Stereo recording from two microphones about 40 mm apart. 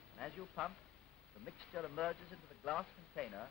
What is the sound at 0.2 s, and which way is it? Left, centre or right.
A man's voice, centre.